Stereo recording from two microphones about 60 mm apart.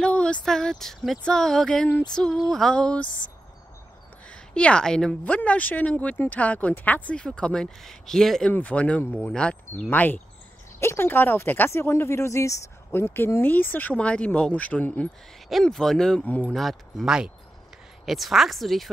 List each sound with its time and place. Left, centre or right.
0.0 s speech: centre
4.3 s speech: centre
7.2 s speech: centre
8.5 s speech: left
9.8 s speech: left
10.8 s speech: left
11.7 s speech: left
12.9 s speech: left
13.9 s speech: centre
15.6 s speech: centre
16.3 s speech: left
16.5 s speech: centre
17.0 s speech: centre